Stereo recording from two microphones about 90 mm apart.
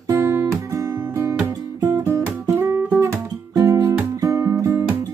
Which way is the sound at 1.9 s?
35° right (ahead or behind).